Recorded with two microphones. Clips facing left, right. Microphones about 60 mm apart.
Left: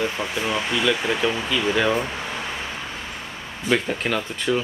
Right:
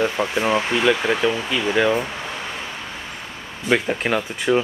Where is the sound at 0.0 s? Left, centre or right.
Right.